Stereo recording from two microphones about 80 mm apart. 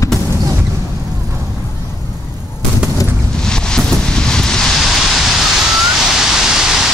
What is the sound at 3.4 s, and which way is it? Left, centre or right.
Wind, centre.